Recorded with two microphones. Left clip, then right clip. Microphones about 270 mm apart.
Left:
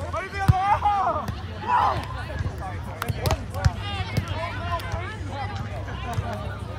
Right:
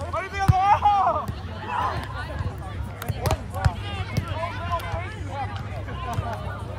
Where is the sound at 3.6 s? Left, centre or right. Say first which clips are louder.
Even; centre.